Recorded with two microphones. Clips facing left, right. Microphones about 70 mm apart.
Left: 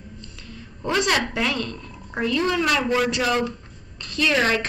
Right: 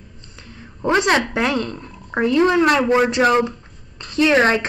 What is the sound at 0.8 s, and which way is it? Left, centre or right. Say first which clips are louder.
Speech: right 5 dB; right.